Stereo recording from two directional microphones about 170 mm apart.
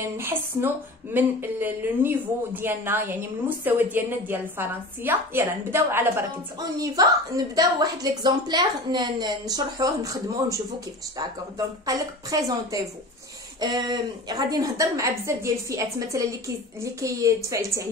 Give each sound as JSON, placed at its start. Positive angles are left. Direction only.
{"t": 0.0, "sound": "a woman's voice", "side_deg": -15}